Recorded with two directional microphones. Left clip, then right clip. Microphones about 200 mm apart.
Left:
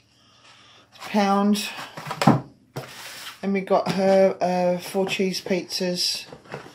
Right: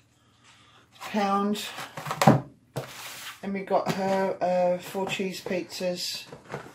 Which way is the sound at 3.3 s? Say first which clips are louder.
Left 5 dB; 50° left (ahead or behind).